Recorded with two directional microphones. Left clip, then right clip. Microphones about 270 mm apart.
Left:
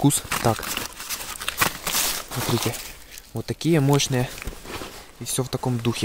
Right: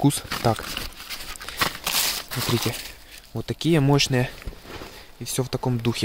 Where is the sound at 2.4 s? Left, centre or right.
Centre.